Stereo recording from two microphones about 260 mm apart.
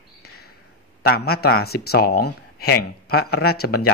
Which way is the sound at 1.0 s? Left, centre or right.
Left.